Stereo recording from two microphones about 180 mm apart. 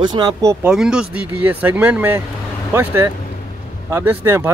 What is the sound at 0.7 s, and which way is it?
Speech, 5° right (ahead or behind).